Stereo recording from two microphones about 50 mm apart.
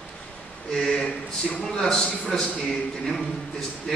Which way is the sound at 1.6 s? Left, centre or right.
Centre.